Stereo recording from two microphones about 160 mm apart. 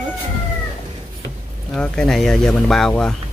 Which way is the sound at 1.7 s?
5° left (ahead or behind).